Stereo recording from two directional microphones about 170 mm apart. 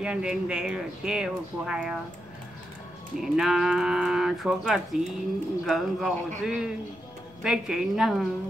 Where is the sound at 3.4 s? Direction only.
5° right (ahead or behind).